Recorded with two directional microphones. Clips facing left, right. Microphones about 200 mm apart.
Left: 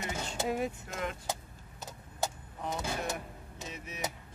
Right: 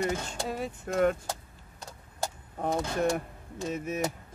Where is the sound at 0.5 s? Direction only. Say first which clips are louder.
Left 2 dB; 10° left (ahead or behind).